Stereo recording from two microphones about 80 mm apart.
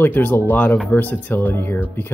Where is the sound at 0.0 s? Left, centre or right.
Left.